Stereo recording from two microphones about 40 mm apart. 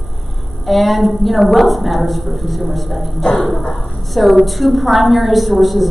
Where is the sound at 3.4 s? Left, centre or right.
Left.